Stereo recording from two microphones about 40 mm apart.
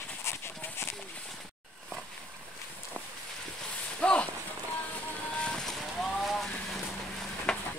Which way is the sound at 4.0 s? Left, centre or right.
Left.